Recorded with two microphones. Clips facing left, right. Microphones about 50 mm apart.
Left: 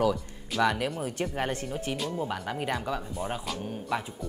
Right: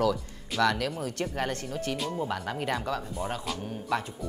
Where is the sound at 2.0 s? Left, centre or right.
Centre.